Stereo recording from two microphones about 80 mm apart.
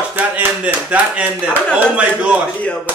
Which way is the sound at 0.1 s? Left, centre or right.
Right.